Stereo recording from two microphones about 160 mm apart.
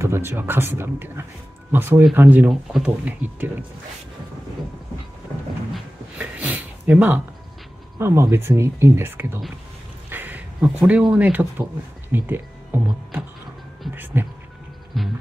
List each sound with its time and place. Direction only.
0.0 s speech: 15° right (ahead or behind)
5.7 s a sound: 10° right (ahead or behind)
8.0 s speech: 15° right (ahead or behind)
14.9 s music: centre (ahead or behind)